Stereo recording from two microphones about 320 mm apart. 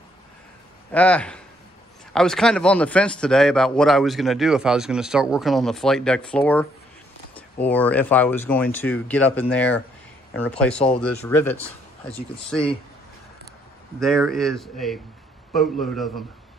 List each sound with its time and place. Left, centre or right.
0.9 s a man's voice: centre
13.9 s a man's voice: centre